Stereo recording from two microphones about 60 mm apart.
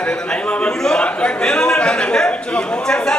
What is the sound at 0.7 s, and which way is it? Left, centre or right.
A man's voice, centre.